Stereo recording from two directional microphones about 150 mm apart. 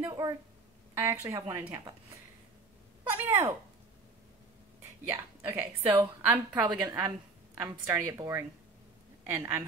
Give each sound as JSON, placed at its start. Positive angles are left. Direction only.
{"t": 0.0, "sound": "a woman's voice", "side_deg": -25}
{"t": 3.0, "sound": "speech", "side_deg": -15}
{"t": 5.0, "sound": "a woman's voice", "side_deg": -15}
{"t": 6.6, "sound": "a woman's voice", "side_deg": -25}